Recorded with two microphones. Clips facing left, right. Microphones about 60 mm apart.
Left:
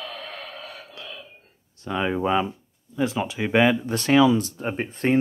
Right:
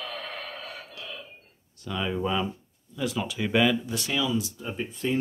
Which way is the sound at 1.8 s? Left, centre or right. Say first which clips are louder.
Left 5 dB; left.